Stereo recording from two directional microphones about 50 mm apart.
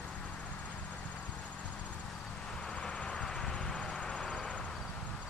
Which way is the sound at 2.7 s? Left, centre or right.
Left.